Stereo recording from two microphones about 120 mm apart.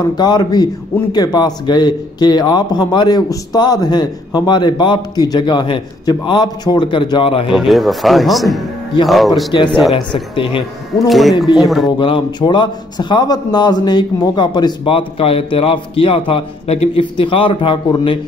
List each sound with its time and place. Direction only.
0.0 s a man's voice: 35° left (ahead or behind)
7.5 s speech: centre (ahead or behind)
10.3 s a man's voice: 45° left (ahead or behind)
11.1 s speech: centre (ahead or behind)
12.0 s a man's voice: 45° left (ahead or behind)